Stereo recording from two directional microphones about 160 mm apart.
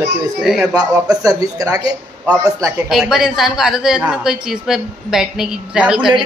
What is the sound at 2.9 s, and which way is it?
A woman's voice, centre (ahead or behind).